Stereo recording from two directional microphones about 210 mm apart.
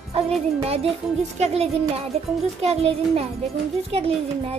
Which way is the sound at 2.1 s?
30° right (ahead or behind).